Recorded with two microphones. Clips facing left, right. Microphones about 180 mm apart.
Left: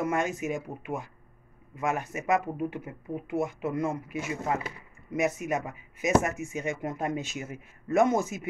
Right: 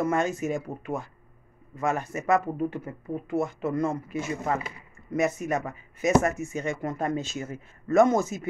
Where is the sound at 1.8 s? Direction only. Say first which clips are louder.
Right 2 dB; 10° left (ahead or behind).